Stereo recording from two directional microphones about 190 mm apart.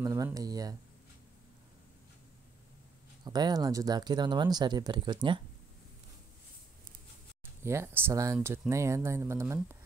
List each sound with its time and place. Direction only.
0.0 s speech: 20° right (ahead or behind)
3.3 s speech: 20° right (ahead or behind)
7.6 s speech: 15° right (ahead or behind)